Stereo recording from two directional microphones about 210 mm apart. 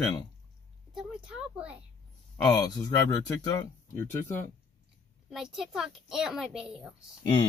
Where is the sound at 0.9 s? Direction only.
5° right (ahead or behind).